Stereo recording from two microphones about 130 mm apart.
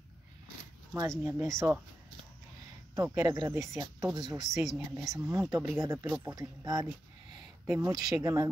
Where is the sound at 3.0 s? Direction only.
20° right (ahead or behind).